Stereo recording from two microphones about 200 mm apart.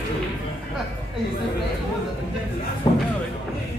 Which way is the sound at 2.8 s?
20° left (ahead or behind).